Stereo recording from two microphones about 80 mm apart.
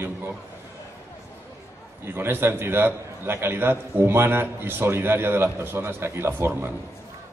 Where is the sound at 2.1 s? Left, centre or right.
Right.